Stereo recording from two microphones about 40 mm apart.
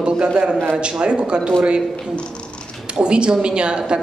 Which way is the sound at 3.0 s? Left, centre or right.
Right.